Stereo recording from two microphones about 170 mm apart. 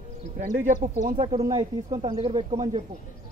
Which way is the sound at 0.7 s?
50° right (ahead or behind).